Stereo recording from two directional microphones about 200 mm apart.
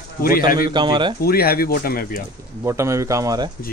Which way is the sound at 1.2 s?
50° left (ahead or behind).